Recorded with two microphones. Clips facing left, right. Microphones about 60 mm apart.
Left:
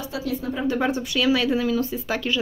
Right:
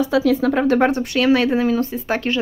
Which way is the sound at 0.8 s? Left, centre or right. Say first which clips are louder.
Right 5 dB; right.